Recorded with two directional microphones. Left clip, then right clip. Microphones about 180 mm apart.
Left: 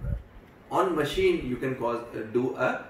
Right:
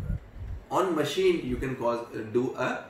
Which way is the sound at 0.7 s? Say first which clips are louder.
Left 1 dB; 15° right (ahead or behind).